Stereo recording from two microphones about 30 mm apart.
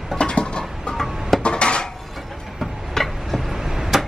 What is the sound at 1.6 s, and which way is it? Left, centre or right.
Dishes, left.